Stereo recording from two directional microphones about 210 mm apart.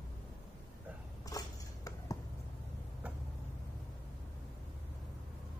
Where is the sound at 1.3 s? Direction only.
15° left (ahead or behind).